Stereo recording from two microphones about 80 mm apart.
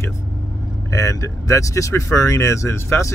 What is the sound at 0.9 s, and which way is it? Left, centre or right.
Speech, left.